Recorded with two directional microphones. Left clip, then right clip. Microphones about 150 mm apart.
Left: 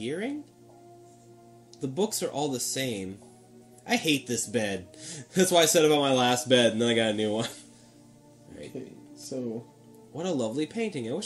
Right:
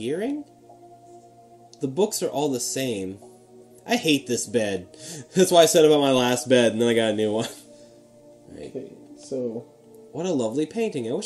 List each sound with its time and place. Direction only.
0.0 s a man's voice: 25° right (ahead or behind)
1.8 s a man's voice: 30° right (ahead or behind)
10.1 s a man's voice: 30° right (ahead or behind)